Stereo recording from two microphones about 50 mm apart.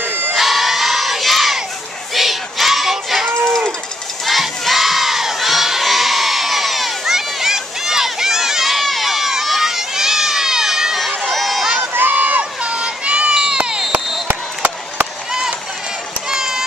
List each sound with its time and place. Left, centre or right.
0.0 s crowd: right
0.3 s crowd: centre
2.1 s child singing: centre
3.4 s livestock: centre
4.3 s crowd: centre
11.9 s crowd: right; by 13.8 s centre
14.2 s a sound: right
16.3 s a sound: centre